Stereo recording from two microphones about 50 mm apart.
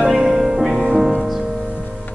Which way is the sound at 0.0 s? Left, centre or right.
Centre.